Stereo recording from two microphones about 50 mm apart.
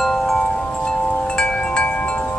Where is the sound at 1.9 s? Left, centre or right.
Left.